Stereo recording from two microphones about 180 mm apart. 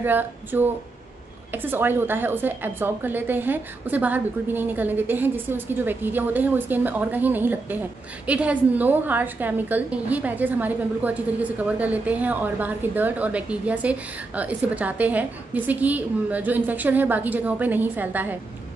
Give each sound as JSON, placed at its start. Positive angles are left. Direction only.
{"t": 0.0, "sound": "a woman's voice", "side_deg": -10}